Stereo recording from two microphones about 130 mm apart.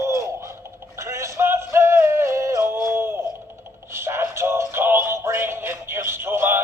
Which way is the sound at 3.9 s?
20° right (ahead or behind).